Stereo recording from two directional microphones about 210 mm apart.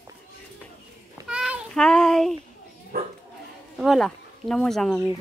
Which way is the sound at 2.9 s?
45° right (ahead or behind).